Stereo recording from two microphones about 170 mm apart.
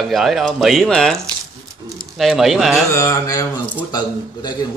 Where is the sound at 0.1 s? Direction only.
Centre (ahead or behind).